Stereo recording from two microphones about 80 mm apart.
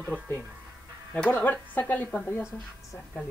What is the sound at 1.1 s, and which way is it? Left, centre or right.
Speech, centre.